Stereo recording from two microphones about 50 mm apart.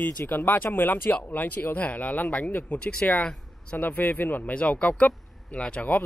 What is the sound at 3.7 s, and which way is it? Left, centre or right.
Speech, left.